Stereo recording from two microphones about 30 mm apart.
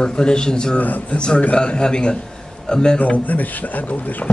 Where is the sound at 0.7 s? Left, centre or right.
Left.